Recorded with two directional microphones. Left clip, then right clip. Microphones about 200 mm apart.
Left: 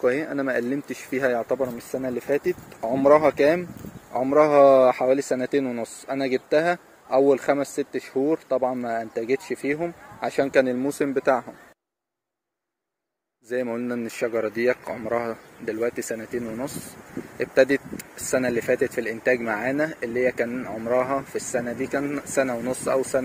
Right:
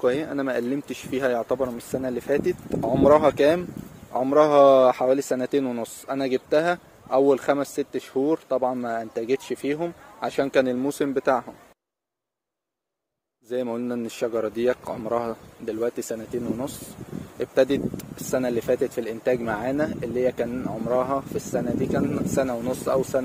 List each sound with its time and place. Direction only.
0.0 s speech: centre (ahead or behind)
7.8 s speech: 60° right (ahead or behind)
8.1 s speech: 5° right (ahead or behind)
13.5 s speech: 5° right (ahead or behind)